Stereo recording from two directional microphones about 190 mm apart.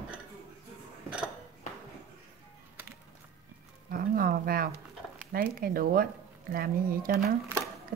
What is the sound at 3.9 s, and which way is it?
Speech, 50° right (ahead or behind).